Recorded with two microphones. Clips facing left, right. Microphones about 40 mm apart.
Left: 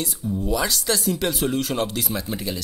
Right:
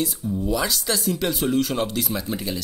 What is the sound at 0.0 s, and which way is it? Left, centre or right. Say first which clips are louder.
Speech: right 1 dB; centre.